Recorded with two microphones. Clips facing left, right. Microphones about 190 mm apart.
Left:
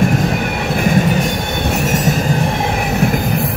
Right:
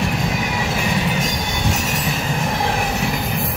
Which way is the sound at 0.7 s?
55° left (ahead or behind).